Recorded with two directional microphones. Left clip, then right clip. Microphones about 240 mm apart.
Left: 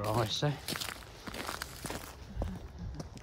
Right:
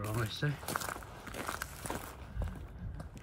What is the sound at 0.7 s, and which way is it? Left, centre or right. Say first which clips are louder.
Walk: right 1 dB; centre.